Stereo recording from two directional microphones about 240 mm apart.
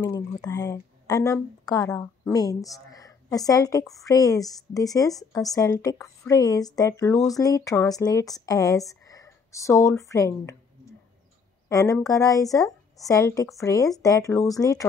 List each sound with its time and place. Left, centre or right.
0.0 s a woman's voice: centre
11.7 s a woman's voice: centre